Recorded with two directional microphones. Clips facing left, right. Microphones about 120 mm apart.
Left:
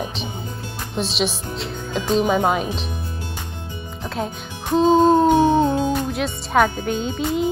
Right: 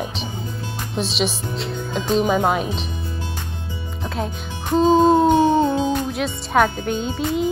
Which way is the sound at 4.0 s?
Centre (ahead or behind).